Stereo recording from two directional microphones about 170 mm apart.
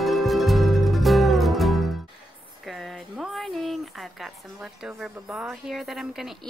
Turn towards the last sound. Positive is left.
turn(degrees=0)  # may be behind; listen again after turning